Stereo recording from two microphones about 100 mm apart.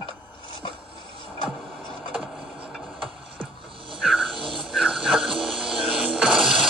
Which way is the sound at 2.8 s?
60° right (ahead or behind).